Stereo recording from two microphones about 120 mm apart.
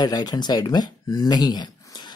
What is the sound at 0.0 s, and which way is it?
Speech, 35° left (ahead or behind).